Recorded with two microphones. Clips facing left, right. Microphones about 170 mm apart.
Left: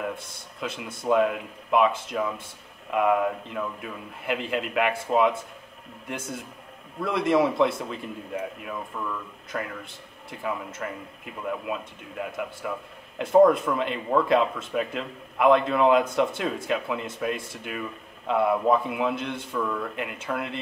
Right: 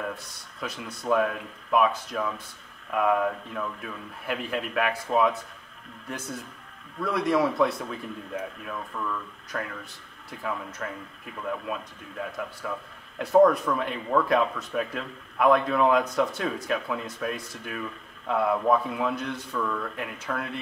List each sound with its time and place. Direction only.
0.0 s a man's voice: 20° left (ahead or behind)